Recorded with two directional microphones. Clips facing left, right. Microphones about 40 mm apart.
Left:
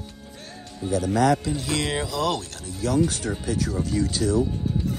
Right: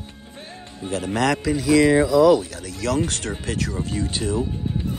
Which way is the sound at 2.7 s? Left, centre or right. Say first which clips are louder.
Right 1 dB; right.